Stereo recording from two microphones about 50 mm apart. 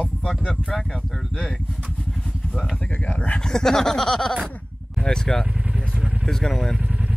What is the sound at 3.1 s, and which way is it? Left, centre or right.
Speech, left.